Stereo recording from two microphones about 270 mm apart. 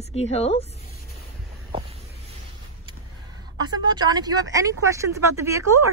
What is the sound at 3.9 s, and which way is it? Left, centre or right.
Speech, centre.